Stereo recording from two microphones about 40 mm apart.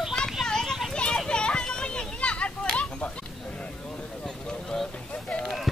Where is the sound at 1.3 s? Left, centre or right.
Left.